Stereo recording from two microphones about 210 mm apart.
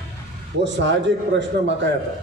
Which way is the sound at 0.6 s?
60° right (ahead or behind).